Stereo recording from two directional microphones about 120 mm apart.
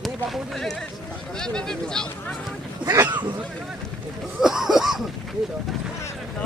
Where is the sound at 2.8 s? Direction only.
35° right (ahead or behind).